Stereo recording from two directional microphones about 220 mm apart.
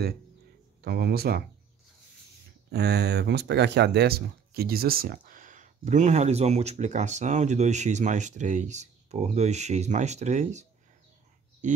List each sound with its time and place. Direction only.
0.8 s speech: 45° right (ahead or behind)
2.7 s speech: 50° right (ahead or behind); by 10.6 s 35° right (ahead or behind)
11.6 s speech: 35° right (ahead or behind)